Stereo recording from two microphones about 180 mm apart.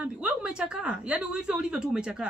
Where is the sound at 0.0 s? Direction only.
5° right (ahead or behind).